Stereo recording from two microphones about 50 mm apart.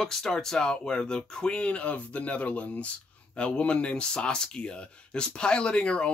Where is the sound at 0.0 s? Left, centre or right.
Centre.